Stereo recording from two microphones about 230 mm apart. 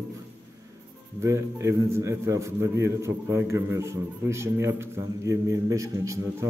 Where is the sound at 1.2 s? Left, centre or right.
Centre.